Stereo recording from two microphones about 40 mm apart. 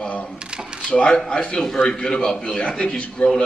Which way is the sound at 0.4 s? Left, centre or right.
Right.